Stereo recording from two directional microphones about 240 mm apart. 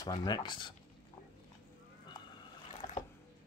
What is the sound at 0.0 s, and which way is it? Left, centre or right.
Speech, centre.